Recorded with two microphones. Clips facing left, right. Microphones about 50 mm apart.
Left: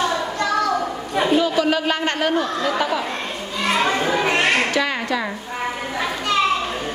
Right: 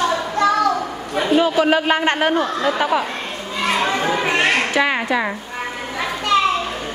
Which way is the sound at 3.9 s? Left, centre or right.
Centre.